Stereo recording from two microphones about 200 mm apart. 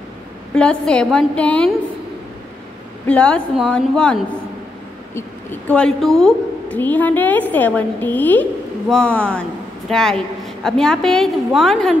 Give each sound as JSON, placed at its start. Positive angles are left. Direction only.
{"t": 0.6, "sound": "a woman's voice", "side_deg": 5}
{"t": 3.1, "sound": "a woman's voice", "side_deg": 5}